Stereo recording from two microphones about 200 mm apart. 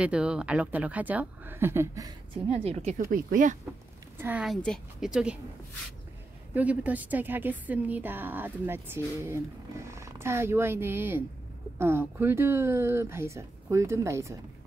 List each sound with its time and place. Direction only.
0.0 s a woman's voice: 5° right (ahead or behind)
2.5 s speech: 30° right (ahead or behind)
3.1 s speech: 45° right (ahead or behind)
4.2 s a woman's voice: 5° right (ahead or behind)
6.5 s a woman's voice: 5° right (ahead or behind)